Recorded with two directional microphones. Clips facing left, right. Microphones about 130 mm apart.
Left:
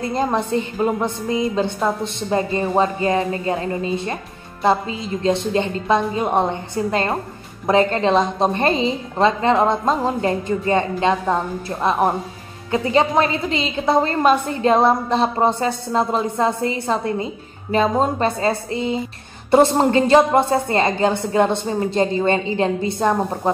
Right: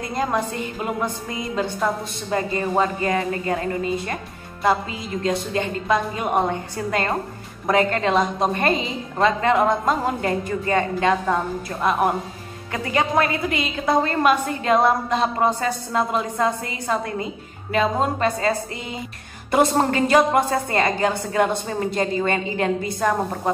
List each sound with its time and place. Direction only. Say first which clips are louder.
0.0 s a woman's voice: left 3 dB; 25° left (ahead or behind)
5.2 s a woman's voice: left 4 dB; 25° left (ahead or behind)